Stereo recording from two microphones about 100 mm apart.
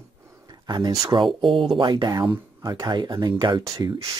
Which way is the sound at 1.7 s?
45° right (ahead or behind).